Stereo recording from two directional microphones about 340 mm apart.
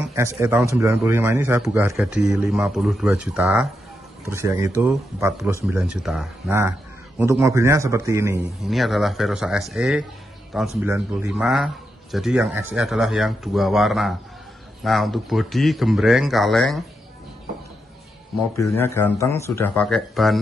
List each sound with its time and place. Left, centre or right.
0.1 s a man's voice: centre
18.6 s speech: centre